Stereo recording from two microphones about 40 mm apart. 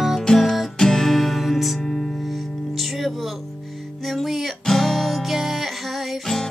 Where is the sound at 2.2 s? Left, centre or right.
Centre.